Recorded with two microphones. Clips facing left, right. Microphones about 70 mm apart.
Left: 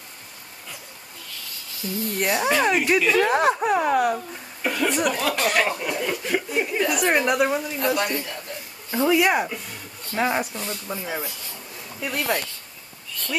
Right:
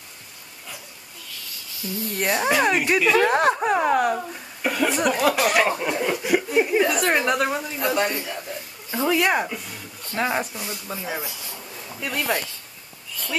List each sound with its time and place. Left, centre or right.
2.0 s a woman's voice: centre
5.9 s speech: right
6.2 s speech: centre
6.9 s a woman's voice: centre
8.9 s a woman's voice: centre